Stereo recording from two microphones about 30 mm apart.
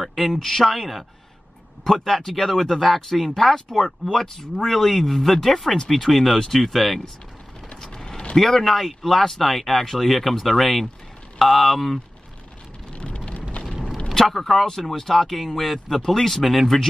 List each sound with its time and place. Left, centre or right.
0.0 s speech: centre
0.7 s speech: centre
2.0 s speech: centre
7.9 s mechanisms: left
8.4 s speech: centre
12.9 s rain: left
14.1 s speech: centre